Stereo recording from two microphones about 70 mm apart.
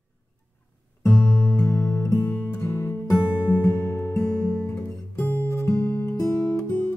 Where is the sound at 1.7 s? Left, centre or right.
Left.